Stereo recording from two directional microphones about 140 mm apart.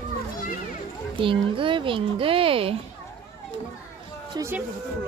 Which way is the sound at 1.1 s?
40° right (ahead or behind).